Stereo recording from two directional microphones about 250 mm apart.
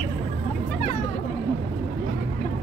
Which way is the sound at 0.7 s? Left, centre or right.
Left.